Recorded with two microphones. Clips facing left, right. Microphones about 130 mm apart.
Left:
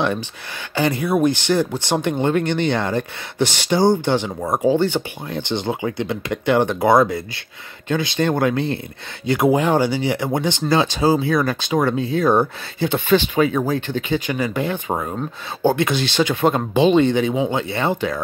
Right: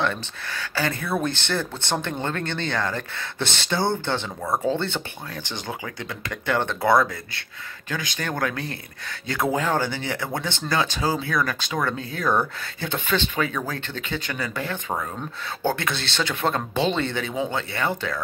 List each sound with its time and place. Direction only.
0.7 s speech: 20° left (ahead or behind)